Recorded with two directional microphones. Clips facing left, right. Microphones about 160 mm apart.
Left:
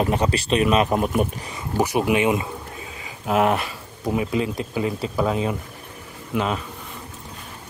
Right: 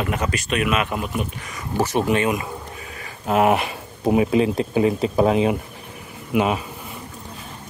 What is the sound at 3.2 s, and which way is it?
Speech, centre (ahead or behind).